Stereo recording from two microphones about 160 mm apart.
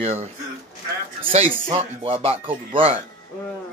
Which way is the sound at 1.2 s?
35° right (ahead or behind).